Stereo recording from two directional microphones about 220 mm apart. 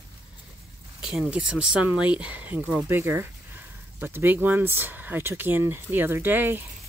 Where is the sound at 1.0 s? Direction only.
5° right (ahead or behind).